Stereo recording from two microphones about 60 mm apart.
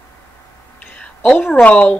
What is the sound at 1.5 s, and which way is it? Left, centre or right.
Speech, left.